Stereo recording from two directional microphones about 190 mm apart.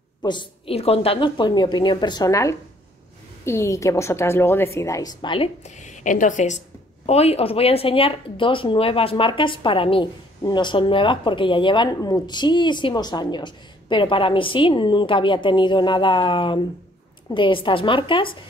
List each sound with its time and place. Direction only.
0.2 s a woman's voice: 25° left (ahead or behind)